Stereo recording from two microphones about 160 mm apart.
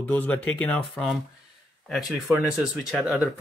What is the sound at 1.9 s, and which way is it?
Speech, centre (ahead or behind).